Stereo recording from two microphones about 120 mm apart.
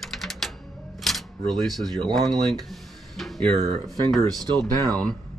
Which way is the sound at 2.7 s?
Centre (ahead or behind).